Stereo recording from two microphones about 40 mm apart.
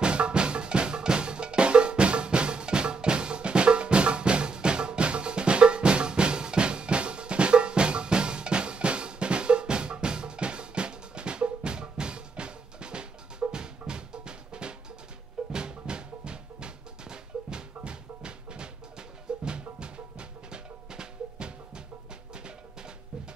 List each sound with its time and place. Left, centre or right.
0.0 s drum: right
13.5 s music: right